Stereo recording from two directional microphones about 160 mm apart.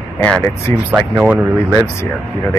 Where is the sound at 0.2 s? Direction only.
10° left (ahead or behind).